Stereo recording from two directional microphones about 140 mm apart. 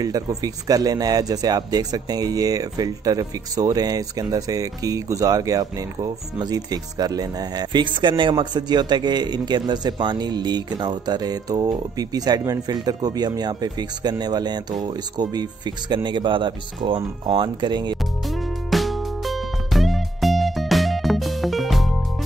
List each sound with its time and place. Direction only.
0.0 s speech: 25° right (ahead or behind)
18.7 s music: centre (ahead or behind)